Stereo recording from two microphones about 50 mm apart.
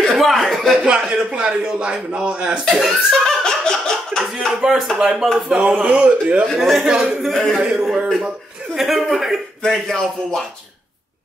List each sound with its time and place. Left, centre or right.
0.2 s a sound: centre
0.7 s a man's voice: centre
2.7 s a man's voice: centre
3.3 s laughter: centre
4.5 s speech: centre
5.5 s a man's voice: right
6.4 s a man's voice: centre
6.9 s speech: centre
7.2 s a man's voice: centre
7.6 s speech: centre
8.7 s a man's voice: centre
9.6 s speech: centre